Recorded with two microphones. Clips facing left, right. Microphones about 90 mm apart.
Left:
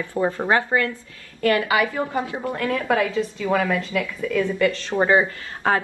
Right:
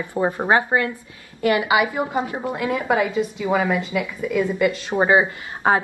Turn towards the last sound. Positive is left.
turn(degrees=-20)  # may be behind; listen again after turning